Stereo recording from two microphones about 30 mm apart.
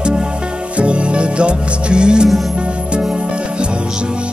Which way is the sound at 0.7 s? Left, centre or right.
Right.